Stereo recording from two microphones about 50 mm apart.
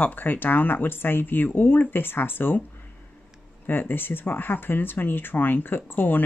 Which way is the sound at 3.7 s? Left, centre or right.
Left.